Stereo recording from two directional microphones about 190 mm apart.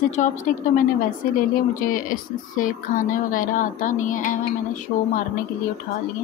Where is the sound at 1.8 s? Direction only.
45° left (ahead or behind).